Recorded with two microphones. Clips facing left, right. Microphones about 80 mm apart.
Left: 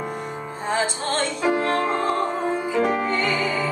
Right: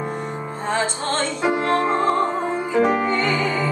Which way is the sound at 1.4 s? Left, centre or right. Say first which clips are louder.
Right 2 dB; centre.